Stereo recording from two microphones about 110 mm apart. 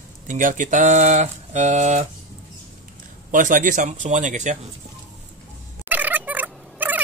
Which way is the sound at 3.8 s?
90° right.